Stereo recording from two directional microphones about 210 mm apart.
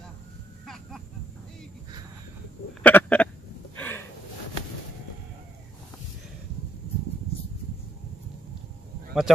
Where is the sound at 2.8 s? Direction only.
5° left (ahead or behind).